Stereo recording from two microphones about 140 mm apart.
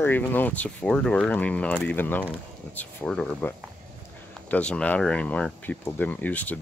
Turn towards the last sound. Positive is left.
turn(degrees=10)  # may be behind; listen again after turning